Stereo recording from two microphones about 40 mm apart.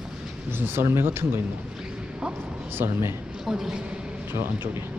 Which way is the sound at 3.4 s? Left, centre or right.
Centre.